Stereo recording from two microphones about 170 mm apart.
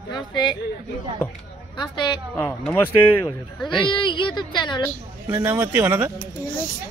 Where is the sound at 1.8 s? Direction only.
25° left (ahead or behind).